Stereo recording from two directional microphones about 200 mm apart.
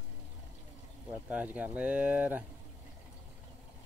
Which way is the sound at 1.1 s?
5° right (ahead or behind).